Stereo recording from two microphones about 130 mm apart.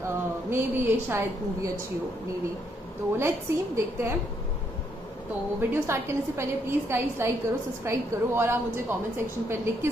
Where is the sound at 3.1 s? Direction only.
20° right (ahead or behind).